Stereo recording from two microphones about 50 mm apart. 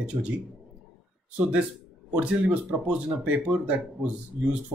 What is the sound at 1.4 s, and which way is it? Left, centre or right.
A man's voice, right.